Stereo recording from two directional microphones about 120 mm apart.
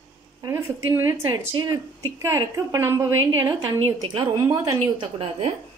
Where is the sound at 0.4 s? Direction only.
25° right (ahead or behind).